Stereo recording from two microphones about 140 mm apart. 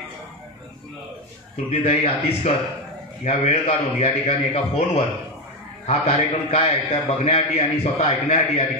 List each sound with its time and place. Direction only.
1.7 s a man's voice: 45° left (ahead or behind)